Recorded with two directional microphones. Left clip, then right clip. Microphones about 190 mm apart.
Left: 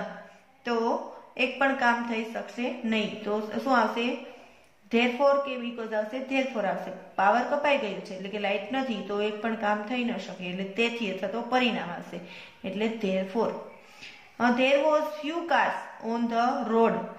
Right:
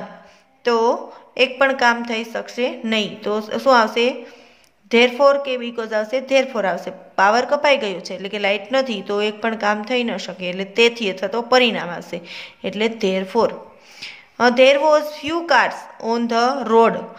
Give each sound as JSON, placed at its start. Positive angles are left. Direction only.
{"t": 0.7, "sound": "a woman's voice", "side_deg": -45}